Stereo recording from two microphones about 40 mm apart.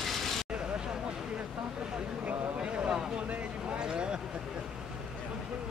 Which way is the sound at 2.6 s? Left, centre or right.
Right.